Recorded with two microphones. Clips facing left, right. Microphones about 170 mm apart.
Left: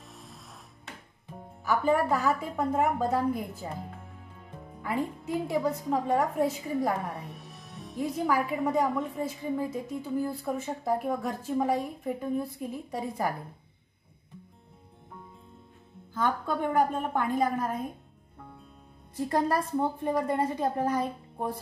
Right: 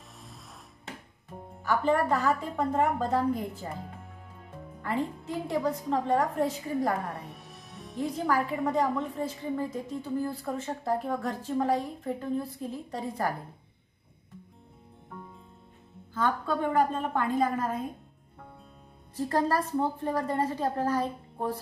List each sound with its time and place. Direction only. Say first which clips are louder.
1.6 s a woman's voice: even; 10° left (ahead or behind)
4.8 s a woman's voice: even; 10° left (ahead or behind)
16.1 s a woman's voice: even; 15° left (ahead or behind)
19.1 s a woman's voice: even; 15° left (ahead or behind)